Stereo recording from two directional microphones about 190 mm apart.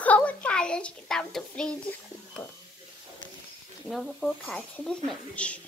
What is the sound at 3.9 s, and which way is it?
A child's voice, centre (ahead or behind).